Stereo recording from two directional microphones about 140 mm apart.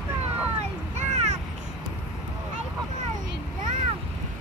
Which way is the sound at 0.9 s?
55° right (ahead or behind).